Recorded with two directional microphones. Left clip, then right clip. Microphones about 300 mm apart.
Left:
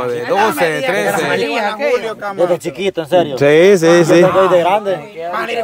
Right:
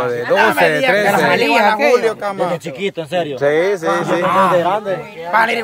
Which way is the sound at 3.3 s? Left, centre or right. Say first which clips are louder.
Left 6 dB; left.